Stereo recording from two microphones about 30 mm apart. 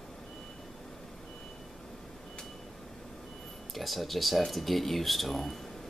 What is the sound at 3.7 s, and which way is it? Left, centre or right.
Speech, centre.